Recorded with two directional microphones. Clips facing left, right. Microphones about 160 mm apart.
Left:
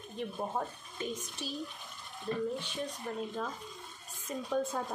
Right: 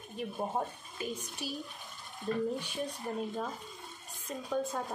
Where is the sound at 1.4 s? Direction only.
10° right (ahead or behind).